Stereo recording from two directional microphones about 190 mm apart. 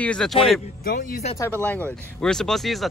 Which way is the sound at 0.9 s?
45° left (ahead or behind).